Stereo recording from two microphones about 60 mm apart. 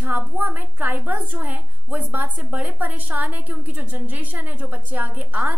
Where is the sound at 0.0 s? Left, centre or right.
Right.